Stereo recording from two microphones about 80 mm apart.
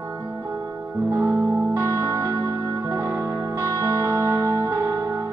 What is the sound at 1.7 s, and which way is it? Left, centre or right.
Music, right.